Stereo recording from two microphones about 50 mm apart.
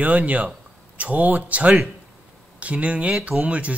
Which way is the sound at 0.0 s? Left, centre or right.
Right.